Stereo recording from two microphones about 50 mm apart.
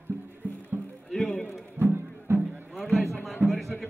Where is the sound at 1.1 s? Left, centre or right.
Centre.